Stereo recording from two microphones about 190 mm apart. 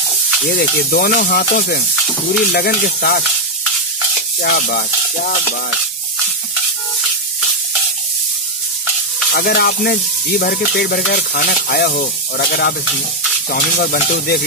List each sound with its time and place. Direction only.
0.5 s snake: 50° left (ahead or behind)
2.0 s stir: centre (ahead or behind)
2.5 s snake: 55° left (ahead or behind)
4.4 s speech: 50° left (ahead or behind)
9.3 s stir: 55° left (ahead or behind)
11.1 s snake: 55° left (ahead or behind)